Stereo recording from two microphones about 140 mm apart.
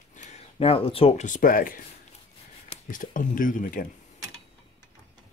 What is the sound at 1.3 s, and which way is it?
Speech, 85° left.